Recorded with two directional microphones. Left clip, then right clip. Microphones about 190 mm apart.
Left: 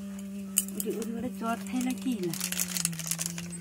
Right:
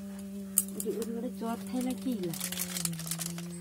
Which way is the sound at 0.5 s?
40° left (ahead or behind).